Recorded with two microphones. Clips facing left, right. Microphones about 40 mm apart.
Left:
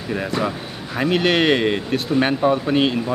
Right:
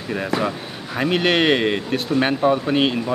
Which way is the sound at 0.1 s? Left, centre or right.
Centre.